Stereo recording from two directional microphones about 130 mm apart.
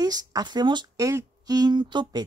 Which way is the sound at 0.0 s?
30° right (ahead or behind).